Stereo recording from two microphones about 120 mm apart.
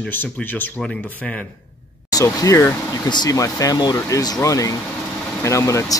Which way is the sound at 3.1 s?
35° left (ahead or behind).